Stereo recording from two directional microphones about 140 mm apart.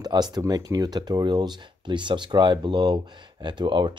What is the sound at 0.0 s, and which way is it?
Speech, 30° right (ahead or behind).